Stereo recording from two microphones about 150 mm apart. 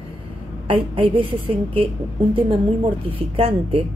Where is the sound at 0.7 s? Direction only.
35° right (ahead or behind).